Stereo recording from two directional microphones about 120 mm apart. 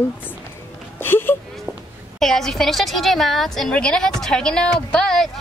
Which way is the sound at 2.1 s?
5° left (ahead or behind).